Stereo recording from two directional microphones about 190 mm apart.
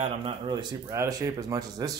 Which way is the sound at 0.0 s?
25° right (ahead or behind).